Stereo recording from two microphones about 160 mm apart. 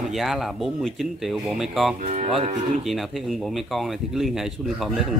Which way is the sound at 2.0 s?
45° right (ahead or behind).